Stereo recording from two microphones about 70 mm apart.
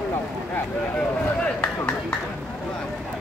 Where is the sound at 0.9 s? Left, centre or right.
Centre.